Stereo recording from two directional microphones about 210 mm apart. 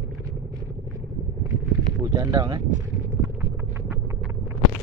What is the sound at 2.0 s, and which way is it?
Speech, 15° right (ahead or behind).